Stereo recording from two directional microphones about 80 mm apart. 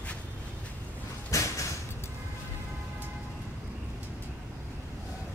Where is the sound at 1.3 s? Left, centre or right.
Left.